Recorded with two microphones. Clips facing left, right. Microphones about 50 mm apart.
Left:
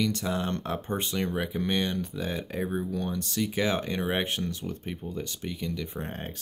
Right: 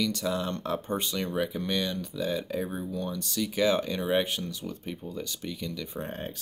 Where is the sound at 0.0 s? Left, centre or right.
Left.